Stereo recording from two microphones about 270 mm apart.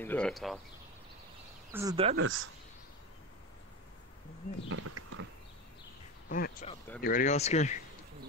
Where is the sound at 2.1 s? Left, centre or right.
Right.